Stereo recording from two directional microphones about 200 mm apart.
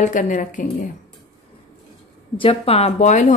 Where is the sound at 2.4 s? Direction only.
30° left (ahead or behind).